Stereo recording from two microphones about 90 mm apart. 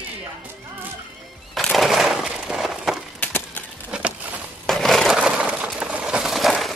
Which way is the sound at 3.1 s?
20° left (ahead or behind).